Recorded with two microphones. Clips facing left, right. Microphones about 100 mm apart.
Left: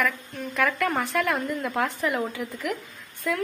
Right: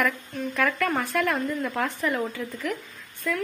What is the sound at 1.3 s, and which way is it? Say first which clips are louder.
A woman's voice: even; 10° left (ahead or behind).